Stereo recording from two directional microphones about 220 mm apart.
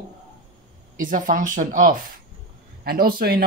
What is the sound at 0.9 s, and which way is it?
Speech, 35° right (ahead or behind).